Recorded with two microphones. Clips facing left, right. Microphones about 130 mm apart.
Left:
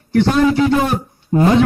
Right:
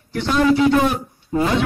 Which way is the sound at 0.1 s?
50° left (ahead or behind).